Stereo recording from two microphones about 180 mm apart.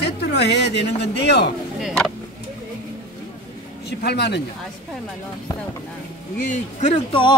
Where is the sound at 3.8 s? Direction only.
65° left (ahead or behind).